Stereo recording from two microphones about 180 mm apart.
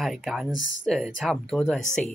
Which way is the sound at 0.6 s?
90° left.